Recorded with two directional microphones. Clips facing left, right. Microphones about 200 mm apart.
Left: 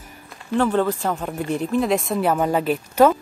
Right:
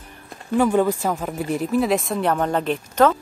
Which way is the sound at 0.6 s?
10° right (ahead or behind).